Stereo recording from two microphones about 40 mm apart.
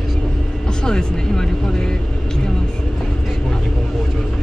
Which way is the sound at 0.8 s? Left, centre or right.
Centre.